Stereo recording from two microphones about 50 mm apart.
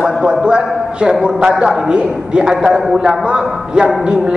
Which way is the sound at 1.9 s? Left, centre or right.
Centre.